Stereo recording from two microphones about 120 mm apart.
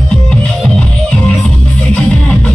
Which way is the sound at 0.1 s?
5° left (ahead or behind).